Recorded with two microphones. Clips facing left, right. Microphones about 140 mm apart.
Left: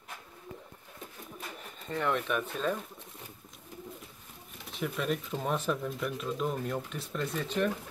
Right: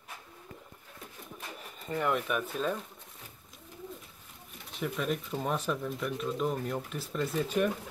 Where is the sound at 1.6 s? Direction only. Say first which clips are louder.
Right 1 dB; 5° right (ahead or behind).